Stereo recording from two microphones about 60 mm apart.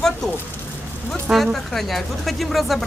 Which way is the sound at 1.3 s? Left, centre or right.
Centre.